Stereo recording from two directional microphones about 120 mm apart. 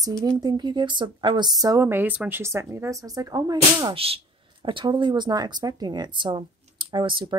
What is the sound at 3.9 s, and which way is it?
Speech, 55° right (ahead or behind).